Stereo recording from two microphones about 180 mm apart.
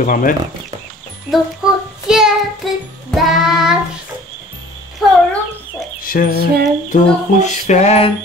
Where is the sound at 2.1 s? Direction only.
5° right (ahead or behind).